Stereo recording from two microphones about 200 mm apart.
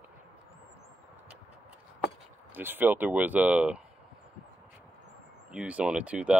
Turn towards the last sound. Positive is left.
turn(degrees=-5)  # may be behind; listen again after turning